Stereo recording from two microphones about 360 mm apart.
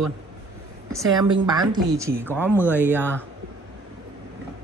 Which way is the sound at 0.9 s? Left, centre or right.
Centre.